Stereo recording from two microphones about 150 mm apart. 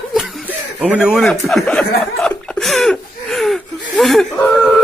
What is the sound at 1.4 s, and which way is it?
Chuckle, 5° left (ahead or behind).